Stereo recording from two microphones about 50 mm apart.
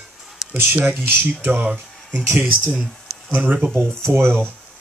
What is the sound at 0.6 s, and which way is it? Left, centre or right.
Speech, right.